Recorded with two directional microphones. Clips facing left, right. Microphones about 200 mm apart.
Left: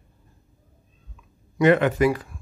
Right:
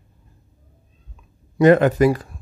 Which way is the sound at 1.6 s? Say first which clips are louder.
Right 4 dB; 40° right (ahead or behind).